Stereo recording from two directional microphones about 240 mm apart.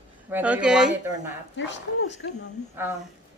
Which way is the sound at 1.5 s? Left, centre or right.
Left.